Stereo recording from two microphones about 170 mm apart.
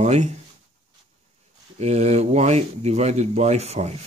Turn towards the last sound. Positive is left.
turn(degrees=-40)  # may be behind; listen again after turning